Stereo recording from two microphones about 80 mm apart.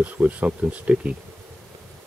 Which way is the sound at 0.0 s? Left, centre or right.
Centre.